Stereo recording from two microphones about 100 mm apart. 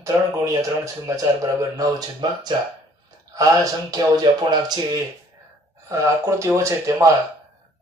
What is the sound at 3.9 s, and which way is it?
Music, 45° right (ahead or behind).